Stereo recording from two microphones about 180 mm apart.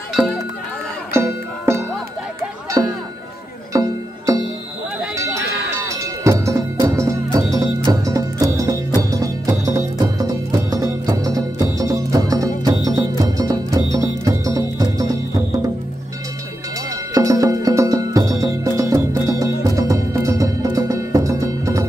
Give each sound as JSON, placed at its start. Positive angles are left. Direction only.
{"t": 0.2, "sound": "speech", "side_deg": -5}
{"t": 2.8, "sound": "music", "side_deg": -20}
{"t": 5.1, "sound": "a sound", "side_deg": -15}
{"t": 5.9, "sound": "music", "side_deg": -15}
{"t": 16.9, "sound": "music", "side_deg": -20}